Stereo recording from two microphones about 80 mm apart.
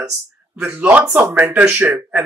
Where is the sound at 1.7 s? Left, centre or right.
Right.